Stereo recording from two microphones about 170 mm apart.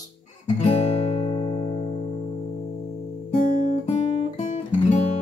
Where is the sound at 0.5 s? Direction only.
35° left (ahead or behind).